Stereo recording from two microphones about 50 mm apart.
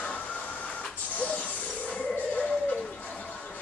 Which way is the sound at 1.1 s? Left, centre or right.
Left.